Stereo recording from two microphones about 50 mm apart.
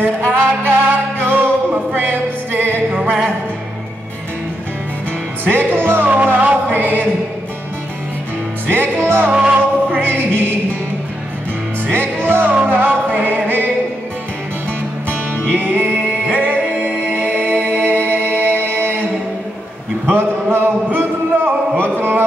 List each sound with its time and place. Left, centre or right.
0.0 s music: right
5.4 s music: right
6.0 s music: right
8.9 s music: right
9.5 s music: right
12.2 s music: right
15.5 s music: right
20.1 s a sound: right